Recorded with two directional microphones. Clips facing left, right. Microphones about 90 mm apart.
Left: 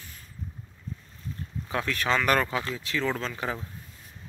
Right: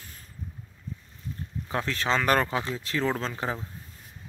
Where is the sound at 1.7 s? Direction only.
25° right (ahead or behind).